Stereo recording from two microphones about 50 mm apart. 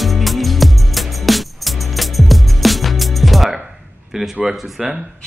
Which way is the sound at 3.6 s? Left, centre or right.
Centre.